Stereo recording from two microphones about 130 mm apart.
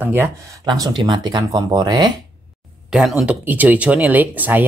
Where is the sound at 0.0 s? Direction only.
15° right (ahead or behind).